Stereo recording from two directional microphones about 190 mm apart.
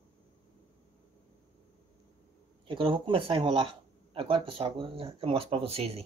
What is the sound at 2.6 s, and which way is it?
Speech, 25° right (ahead or behind).